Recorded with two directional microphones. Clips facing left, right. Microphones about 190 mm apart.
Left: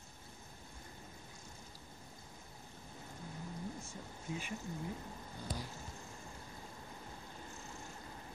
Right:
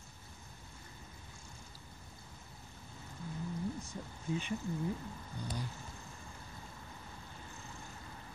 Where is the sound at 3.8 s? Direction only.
30° right (ahead or behind).